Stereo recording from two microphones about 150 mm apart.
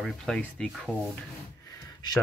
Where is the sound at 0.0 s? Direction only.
5° left (ahead or behind).